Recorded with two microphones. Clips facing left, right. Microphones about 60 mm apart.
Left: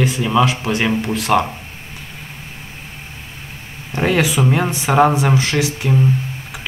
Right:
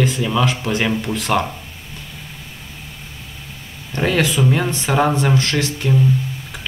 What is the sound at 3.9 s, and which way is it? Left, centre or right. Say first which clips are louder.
Speech: left 1 dB; centre.